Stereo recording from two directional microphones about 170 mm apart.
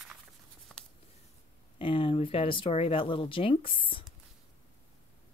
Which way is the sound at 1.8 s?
30° left (ahead or behind).